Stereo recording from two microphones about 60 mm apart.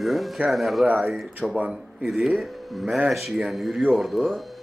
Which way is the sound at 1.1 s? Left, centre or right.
Centre.